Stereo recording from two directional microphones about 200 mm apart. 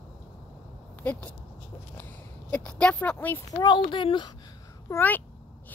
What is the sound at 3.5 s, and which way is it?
Speech, 25° left (ahead or behind).